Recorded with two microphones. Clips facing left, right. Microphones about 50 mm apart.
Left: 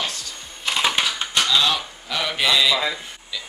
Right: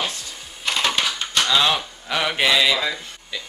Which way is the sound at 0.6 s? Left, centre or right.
Centre.